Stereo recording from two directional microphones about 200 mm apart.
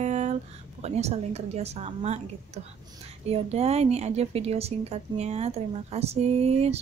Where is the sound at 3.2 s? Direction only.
30° right (ahead or behind).